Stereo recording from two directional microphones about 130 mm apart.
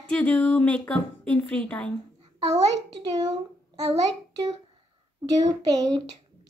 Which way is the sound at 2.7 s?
30° right (ahead or behind).